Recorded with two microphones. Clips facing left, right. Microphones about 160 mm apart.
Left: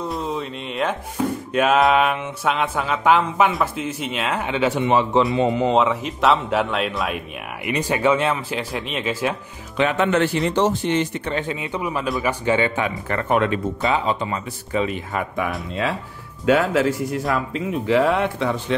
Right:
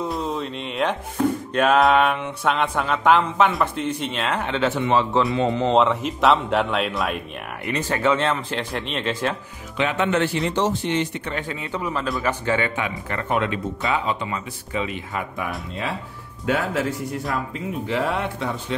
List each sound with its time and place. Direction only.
0.0 s speech: centre (ahead or behind); by 5.2 s 15° left (ahead or behind)
5.5 s speech: 5° left (ahead or behind)
7.6 s speech: 15° left (ahead or behind)
9.8 s speech: 45° left (ahead or behind)
11.2 s speech: 25° left (ahead or behind)
12.1 s speech: centre (ahead or behind)
12.4 s speech: 20° left (ahead or behind)
12.7 s speech: 40° left (ahead or behind)
13.3 s speech: 50° left (ahead or behind)
13.7 s speech: 25° left (ahead or behind); by 15.2 s 40° left (ahead or behind)
16.4 s speech: 90° left